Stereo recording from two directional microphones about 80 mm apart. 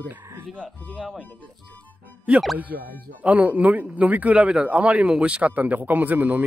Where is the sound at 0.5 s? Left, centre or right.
Centre.